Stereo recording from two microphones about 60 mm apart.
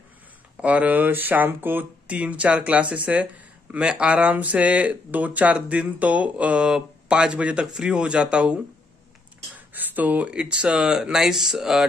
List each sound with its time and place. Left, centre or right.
0.6 s speech: right
2.0 s speech: right
9.8 s speech: right; by 11.8 s centre